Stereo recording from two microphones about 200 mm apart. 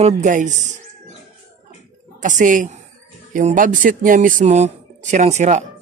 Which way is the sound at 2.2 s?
40° right (ahead or behind).